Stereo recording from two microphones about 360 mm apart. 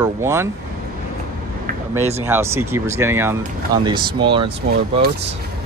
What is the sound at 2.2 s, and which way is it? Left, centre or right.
Speech, centre.